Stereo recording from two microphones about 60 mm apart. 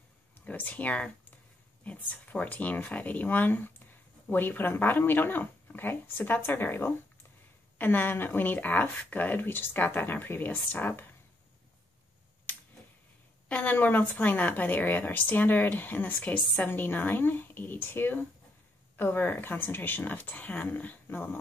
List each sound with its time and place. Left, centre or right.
0.5 s speech: left
13.5 s speech: left